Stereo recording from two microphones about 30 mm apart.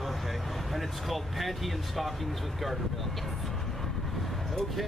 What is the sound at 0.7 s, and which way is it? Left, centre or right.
Speech, centre.